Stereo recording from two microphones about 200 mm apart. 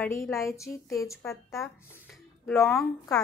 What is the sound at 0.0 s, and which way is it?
A woman's voice, 15° left (ahead or behind).